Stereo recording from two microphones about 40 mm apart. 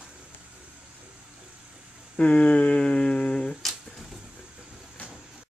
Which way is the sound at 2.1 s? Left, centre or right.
Left.